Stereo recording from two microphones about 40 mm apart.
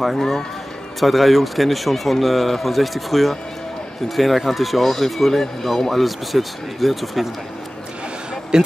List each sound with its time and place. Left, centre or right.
0.0 s speech: centre
8.5 s speech: centre